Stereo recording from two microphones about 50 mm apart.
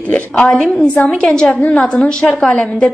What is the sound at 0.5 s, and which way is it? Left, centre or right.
A woman's voice, centre.